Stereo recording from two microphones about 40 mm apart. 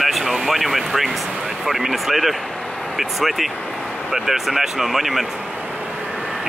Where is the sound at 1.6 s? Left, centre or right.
Centre.